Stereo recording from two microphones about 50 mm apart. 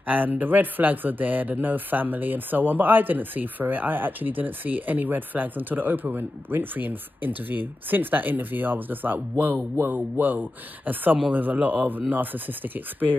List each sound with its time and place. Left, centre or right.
0.0 s speech: right